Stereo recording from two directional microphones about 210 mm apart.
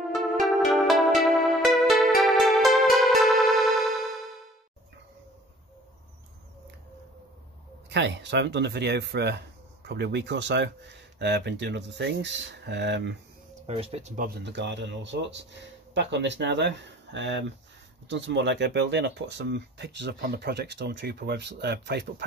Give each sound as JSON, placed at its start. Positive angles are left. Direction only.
{"t": 0.1, "sound": "music", "side_deg": 0}
{"t": 7.9, "sound": "speech", "side_deg": -55}
{"t": 13.7, "sound": "speech", "side_deg": -30}